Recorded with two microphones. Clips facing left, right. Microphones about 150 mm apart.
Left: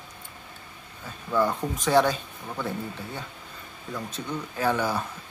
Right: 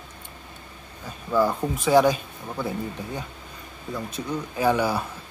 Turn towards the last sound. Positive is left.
turn(degrees=-10)  # may be behind; listen again after turning